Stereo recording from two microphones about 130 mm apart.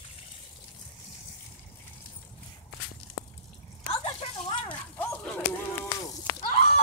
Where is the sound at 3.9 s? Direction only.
40° left (ahead or behind).